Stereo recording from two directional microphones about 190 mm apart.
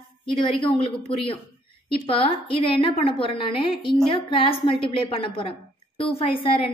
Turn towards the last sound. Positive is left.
turn(degrees=30)  # may be behind; listen again after turning